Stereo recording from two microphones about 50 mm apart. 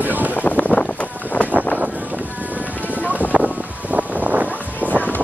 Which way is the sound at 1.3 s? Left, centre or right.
Left.